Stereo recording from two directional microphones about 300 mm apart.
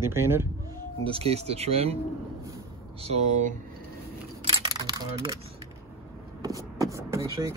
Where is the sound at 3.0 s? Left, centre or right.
Right.